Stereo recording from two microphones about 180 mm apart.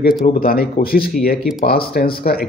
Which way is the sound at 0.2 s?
55° left (ahead or behind).